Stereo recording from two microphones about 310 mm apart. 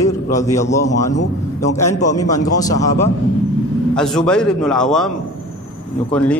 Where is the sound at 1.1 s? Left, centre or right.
Left.